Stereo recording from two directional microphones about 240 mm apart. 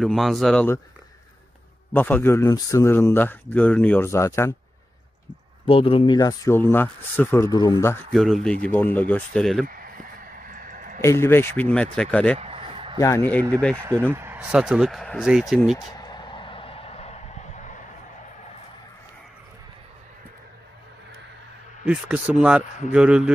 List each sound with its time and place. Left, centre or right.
0.0 s speech: centre
2.0 s speech: centre
5.7 s speech: left
8.1 s speech: centre
10.5 s a sound: right
11.0 s speech: centre
12.4 s a sound: right
13.0 s speech: centre
14.1 s speech: centre
16.0 s vehicle: centre
21.8 s speech: centre